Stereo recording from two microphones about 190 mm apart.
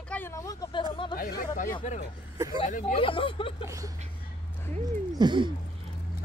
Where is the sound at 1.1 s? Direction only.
50° left (ahead or behind).